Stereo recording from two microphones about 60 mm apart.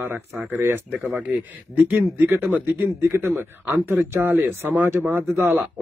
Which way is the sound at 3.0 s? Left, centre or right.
Right.